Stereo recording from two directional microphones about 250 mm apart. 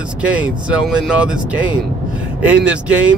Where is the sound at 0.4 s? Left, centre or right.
Centre.